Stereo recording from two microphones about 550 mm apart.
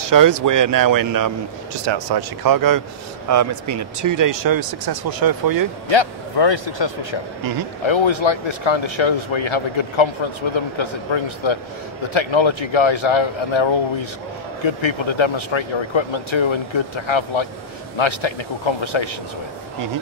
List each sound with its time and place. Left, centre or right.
0.1 s speech: right
1.9 s speech: right
5.9 s a man's voice: left